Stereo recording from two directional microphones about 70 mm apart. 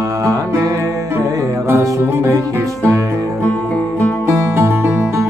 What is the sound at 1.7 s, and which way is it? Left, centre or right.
Music, right.